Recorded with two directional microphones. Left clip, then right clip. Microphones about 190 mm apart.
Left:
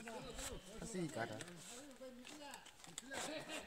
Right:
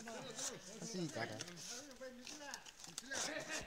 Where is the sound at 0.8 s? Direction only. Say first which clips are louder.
Even; 15° right (ahead or behind).